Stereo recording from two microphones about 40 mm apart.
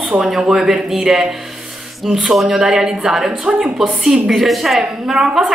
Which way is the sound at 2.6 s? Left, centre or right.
Centre.